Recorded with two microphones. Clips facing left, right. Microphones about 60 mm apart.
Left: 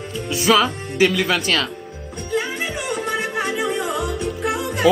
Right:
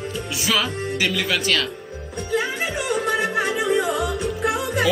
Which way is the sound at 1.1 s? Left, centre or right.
Left.